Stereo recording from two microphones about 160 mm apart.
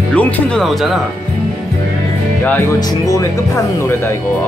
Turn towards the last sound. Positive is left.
turn(degrees=20)  # may be behind; listen again after turning